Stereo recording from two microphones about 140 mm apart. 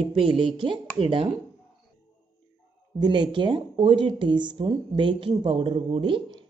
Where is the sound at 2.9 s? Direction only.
35° right (ahead or behind).